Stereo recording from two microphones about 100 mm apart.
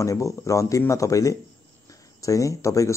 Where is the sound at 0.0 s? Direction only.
30° left (ahead or behind).